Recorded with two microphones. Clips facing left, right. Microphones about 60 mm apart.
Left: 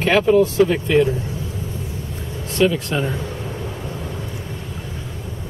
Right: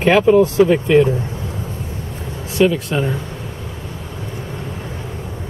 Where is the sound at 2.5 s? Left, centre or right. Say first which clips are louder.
Right 3 dB; centre.